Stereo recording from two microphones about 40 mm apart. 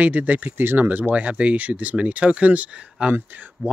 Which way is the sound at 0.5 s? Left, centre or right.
Right.